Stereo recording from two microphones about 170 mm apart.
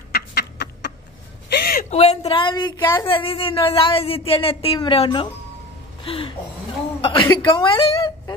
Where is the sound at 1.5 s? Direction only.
65° left (ahead or behind).